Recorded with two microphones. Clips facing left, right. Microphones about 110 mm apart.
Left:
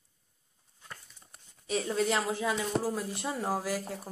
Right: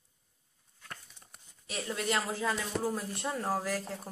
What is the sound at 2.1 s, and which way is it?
Speech, 20° left (ahead or behind).